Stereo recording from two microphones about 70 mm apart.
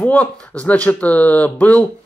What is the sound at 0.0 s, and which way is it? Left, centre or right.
Speech, centre.